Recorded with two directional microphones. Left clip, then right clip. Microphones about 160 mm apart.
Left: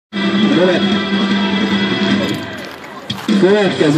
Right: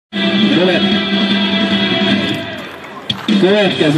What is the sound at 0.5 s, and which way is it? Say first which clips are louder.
Speech: left 1 dB; 20° right (ahead or behind).